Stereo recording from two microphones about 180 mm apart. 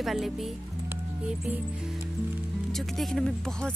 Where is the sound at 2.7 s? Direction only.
Centre (ahead or behind).